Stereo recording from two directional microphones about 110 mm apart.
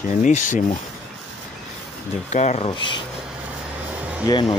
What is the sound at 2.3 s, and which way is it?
Speech, 90° left.